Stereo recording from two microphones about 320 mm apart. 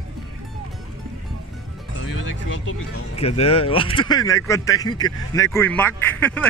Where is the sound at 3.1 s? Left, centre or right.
Centre.